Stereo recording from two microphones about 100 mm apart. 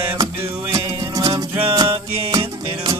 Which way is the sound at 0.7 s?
35° right (ahead or behind).